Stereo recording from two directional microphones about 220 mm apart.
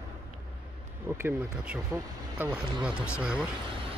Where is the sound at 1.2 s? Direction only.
10° right (ahead or behind).